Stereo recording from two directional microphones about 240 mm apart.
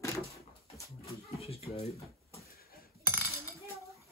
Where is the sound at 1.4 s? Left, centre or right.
Left.